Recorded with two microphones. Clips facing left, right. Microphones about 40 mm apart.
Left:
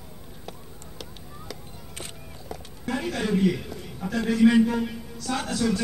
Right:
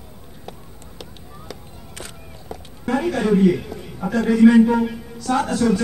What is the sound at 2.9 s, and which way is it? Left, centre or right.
Speech, right.